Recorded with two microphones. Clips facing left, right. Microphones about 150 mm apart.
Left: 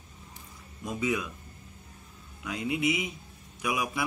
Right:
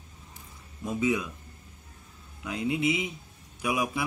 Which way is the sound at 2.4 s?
30° right (ahead or behind).